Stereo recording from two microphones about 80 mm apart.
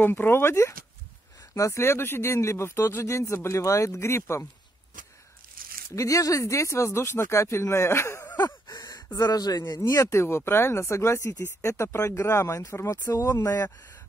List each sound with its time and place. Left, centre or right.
0.0 s speech: left
5.9 s speech: left
8.4 s gasp: left
9.7 s speech: left
12.9 s speech: left